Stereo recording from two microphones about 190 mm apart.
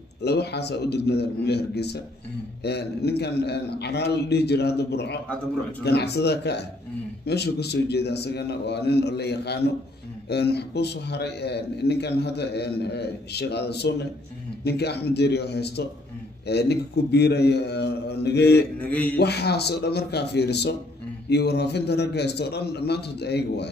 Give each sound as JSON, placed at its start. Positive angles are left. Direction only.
{"t": 0.2, "sound": "a man's voice", "side_deg": 60}
{"t": 18.8, "sound": "mantra", "side_deg": 5}
{"t": 19.1, "sound": "a man's voice", "side_deg": 60}